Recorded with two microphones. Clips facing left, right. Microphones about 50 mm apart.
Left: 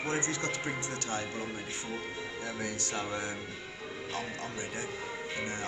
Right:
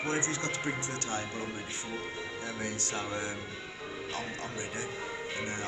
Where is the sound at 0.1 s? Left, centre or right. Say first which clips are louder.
Even; right.